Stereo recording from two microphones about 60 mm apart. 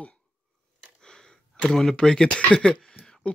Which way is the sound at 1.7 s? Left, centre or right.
Centre.